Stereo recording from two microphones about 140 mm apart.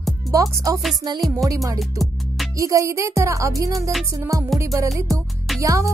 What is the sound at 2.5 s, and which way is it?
Speech, 25° right (ahead or behind).